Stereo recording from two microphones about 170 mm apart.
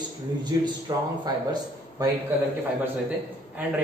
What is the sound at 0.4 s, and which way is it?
A man's voice, 25° right (ahead or behind).